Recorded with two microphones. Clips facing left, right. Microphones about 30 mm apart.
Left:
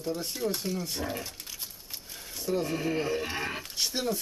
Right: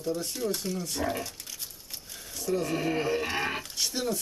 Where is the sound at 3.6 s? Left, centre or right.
Centre.